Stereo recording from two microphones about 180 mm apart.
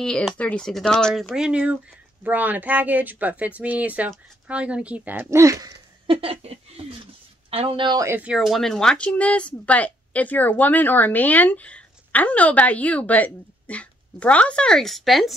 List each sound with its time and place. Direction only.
0.0 s speech: 5° left (ahead or behind); by 6.1 s 20° right (ahead or behind)
6.2 s a woman's voice: 35° right (ahead or behind); by 15.3 s centre (ahead or behind)